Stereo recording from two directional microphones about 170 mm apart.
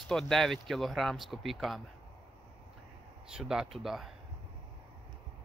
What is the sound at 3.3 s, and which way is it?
Speech, 5° right (ahead or behind).